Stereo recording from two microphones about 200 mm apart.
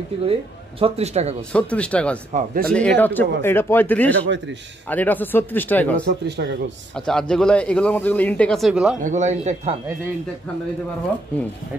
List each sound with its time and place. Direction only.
0.2 s speech: 30° right (ahead or behind)
1.5 s speech: 5° left (ahead or behind)
2.3 s speech: 45° right (ahead or behind)
3.0 s speech: 10° left (ahead or behind)
6.0 s speech: 55° right (ahead or behind)
7.1 s speech: 5° left (ahead or behind)
9.0 s a man's voice: 35° right (ahead or behind)